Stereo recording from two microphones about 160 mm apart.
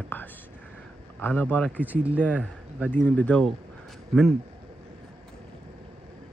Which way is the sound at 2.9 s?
10° left (ahead or behind).